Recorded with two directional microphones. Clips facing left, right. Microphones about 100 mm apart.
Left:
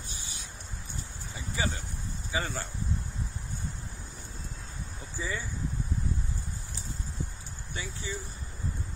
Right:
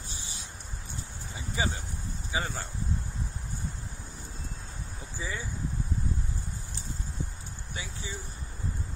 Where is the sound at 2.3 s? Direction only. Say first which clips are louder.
Even; 15° right (ahead or behind).